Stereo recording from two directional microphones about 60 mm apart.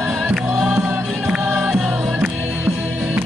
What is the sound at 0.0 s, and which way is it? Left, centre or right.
Music, centre.